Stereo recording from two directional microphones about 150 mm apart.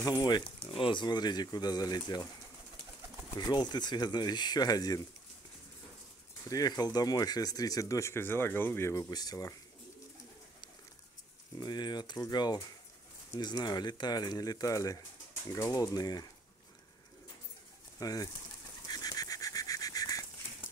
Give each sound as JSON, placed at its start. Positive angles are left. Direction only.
{"t": 0.0, "sound": "speech", "side_deg": 25}
{"t": 0.6, "sound": "speech", "side_deg": 35}
{"t": 3.3, "sound": "speech", "side_deg": 30}
{"t": 6.5, "sound": "speech", "side_deg": 25}
{"t": 11.5, "sound": "speech", "side_deg": 25}
{"t": 17.9, "sound": "speech", "side_deg": 25}
{"t": 18.9, "sound": "a sound", "side_deg": 25}